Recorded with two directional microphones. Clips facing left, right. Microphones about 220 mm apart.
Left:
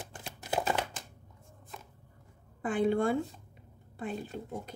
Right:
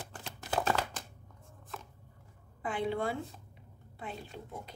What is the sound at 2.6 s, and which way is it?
A woman's voice, 50° left (ahead or behind).